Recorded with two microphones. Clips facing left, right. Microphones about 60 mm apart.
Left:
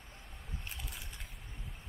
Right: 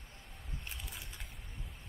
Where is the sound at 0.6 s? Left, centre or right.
Centre.